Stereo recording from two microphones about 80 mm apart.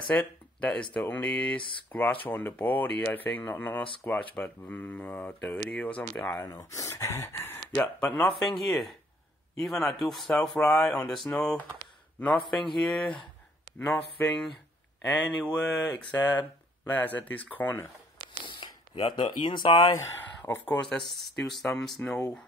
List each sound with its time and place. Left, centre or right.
0.1 s speech: centre
1.6 s speech: left
1.9 s speech: left
6.7 s speech: left
8.3 s speech: centre
15.5 s speech: centre
18.4 s speech: left
20.4 s speech: left
21.2 s speech: centre